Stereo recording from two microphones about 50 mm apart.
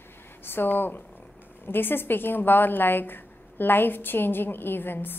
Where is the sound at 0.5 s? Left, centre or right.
Left.